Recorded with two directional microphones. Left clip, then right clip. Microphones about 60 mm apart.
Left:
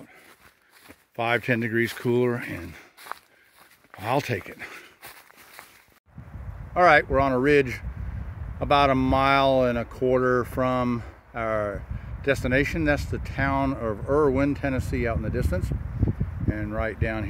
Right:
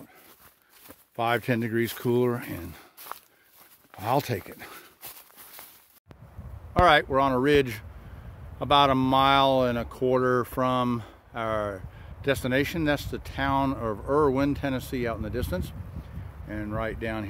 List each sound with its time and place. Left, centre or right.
1.1 s speech: centre
2.6 s speech: right
4.0 s speech: right
4.3 s speech: centre
6.7 s speech: centre